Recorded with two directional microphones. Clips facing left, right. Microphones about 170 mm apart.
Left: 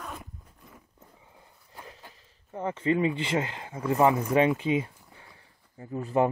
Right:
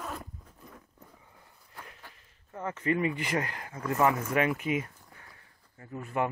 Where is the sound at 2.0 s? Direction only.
25° left (ahead or behind).